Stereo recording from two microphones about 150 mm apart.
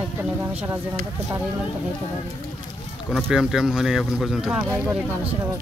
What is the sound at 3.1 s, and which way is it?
Speech, 5° right (ahead or behind).